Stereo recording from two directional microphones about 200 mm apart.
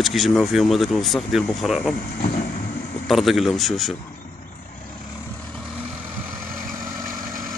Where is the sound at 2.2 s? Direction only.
40° left (ahead or behind).